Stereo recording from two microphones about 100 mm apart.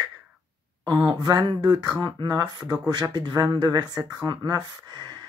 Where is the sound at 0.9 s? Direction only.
50° right (ahead or behind).